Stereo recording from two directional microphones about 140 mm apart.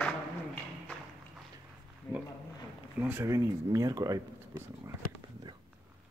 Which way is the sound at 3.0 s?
15° right (ahead or behind).